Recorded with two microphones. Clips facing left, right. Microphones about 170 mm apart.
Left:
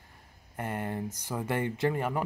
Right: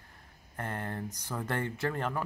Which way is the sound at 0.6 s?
10° left (ahead or behind).